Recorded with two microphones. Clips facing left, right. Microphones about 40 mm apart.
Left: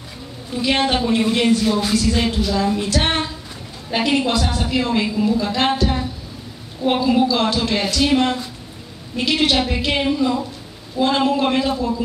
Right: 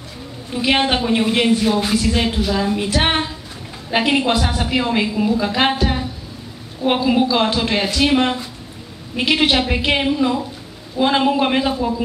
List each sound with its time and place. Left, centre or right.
0.5 s a woman's voice: right